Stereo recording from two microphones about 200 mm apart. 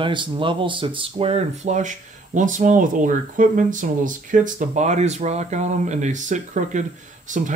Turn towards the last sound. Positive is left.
turn(degrees=-40)  # may be behind; listen again after turning